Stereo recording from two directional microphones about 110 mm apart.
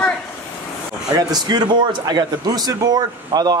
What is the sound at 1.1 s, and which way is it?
Speech, 40° right (ahead or behind).